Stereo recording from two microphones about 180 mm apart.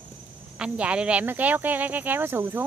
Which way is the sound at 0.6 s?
5° right (ahead or behind).